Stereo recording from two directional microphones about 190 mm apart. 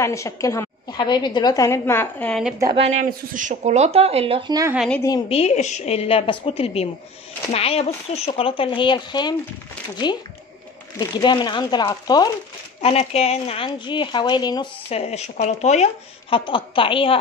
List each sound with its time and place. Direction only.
0.0 s a woman's voice: 15° left (ahead or behind)
2.8 s speech: 40° right (ahead or behind); by 4.7 s 20° right (ahead or behind)
4.7 s a woman's voice: 5° left (ahead or behind)
5.3 s a woman's voice: 35° left (ahead or behind)
11.0 s speech: 20° left (ahead or behind)
12.8 s a woman's voice: 35° left (ahead or behind)